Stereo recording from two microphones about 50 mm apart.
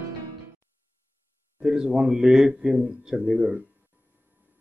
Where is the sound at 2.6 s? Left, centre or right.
Right.